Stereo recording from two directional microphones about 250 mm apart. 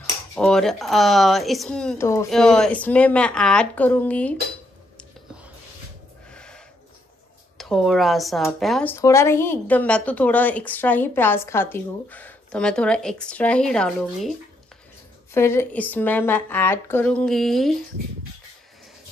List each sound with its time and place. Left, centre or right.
0.4 s speech: centre
6.3 s a sound: centre
7.5 s speech: centre
15.3 s a woman's voice: centre